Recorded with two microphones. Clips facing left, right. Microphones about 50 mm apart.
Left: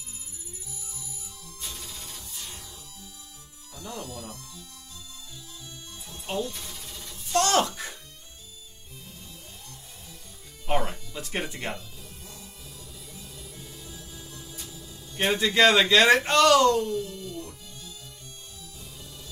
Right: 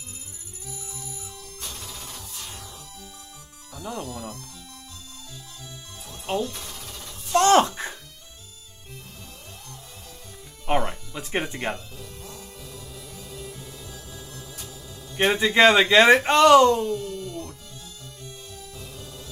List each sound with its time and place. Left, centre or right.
0.7 s music: right
3.8 s speech: right
6.2 s speech: right
7.3 s speech: right
10.9 s music: right
12.0 s music: right
15.1 s speech: right
17.0 s music: right